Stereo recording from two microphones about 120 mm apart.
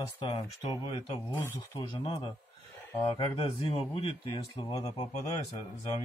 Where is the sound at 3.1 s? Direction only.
50° left (ahead or behind).